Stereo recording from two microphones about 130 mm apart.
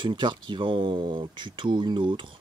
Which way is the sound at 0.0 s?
40° right (ahead or behind).